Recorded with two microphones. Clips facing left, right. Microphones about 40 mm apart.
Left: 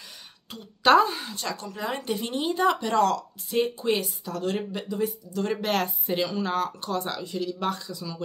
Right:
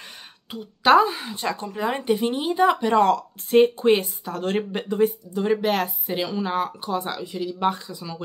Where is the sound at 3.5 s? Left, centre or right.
Right.